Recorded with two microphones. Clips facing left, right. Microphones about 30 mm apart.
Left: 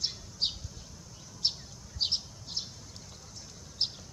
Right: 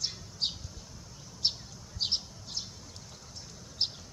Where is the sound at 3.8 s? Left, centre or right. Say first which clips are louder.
Even; centre.